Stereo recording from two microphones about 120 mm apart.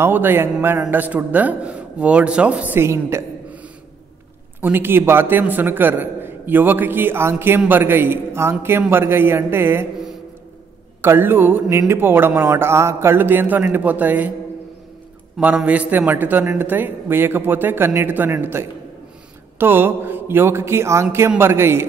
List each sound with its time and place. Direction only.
0.0 s a man's voice: 15° right (ahead or behind)
4.6 s a man's voice: 15° right (ahead or behind)
11.0 s a man's voice: 15° right (ahead or behind)
15.4 s a man's voice: 10° right (ahead or behind)